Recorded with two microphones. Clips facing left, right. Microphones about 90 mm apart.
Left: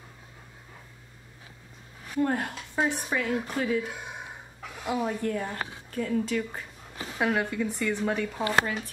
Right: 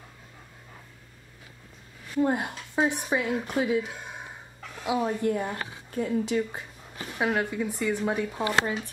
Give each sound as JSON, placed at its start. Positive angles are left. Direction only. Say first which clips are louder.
{"t": 2.1, "sound": "a woman's voice", "louder": "right 2 dB", "side_deg": -15}
{"t": 7.2, "sound": "a woman's voice", "louder": "even", "side_deg": -5}